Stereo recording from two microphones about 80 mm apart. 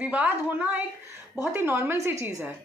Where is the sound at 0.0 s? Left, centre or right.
Centre.